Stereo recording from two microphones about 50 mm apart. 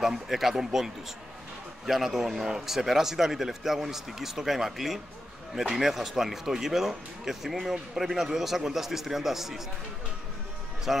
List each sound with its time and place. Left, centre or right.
0.0 s speech: centre
1.9 s speech: centre
2.4 s speech: centre
2.7 s speech: centre
10.9 s speech: centre